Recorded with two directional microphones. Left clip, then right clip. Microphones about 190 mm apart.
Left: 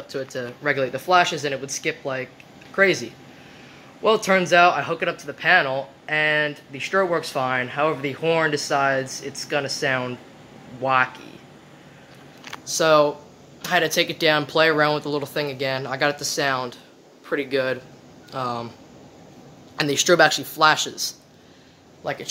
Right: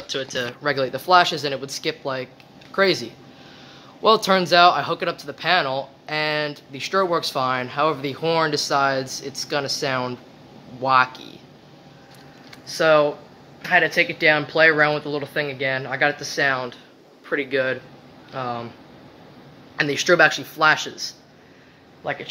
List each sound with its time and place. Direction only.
0.3 s speech: centre (ahead or behind)
12.7 s speech: 15° left (ahead or behind)
19.8 s speech: 15° left (ahead or behind)
22.0 s speech: 10° left (ahead or behind)